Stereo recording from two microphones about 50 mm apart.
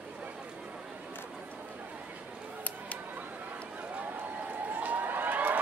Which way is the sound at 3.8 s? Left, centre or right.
Right.